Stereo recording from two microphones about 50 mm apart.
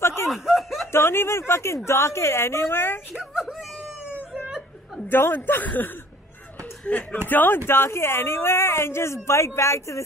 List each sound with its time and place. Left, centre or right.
0.0 s snicker: left
0.3 s snicker: centre
0.9 s speech: left
3.1 s wail: centre
5.1 s a man's voice: left